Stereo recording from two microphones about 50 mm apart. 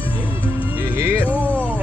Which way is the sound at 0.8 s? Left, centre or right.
Right.